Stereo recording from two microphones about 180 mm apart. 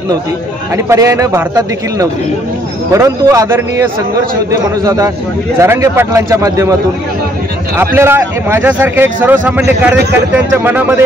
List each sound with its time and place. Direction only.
0.8 s a man's voice: 15° right (ahead or behind)
7.7 s a man's voice: 15° right (ahead or behind)